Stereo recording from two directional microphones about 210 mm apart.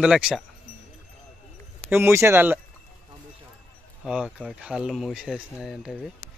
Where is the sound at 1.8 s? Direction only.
10° right (ahead or behind).